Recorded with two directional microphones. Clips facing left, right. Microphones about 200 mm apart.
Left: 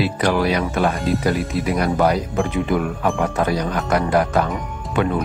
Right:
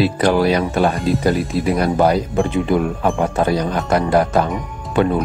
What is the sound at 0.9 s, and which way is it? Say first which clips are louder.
Speech: right 2 dB; centre (ahead or behind).